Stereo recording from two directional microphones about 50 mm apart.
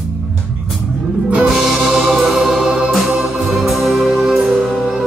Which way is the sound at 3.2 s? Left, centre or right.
Centre.